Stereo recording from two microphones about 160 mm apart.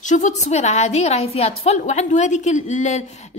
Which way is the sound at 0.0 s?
50° left (ahead or behind).